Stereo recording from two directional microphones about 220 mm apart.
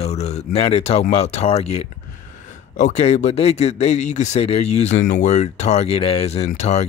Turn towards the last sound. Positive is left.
turn(degrees=30)  # may be behind; listen again after turning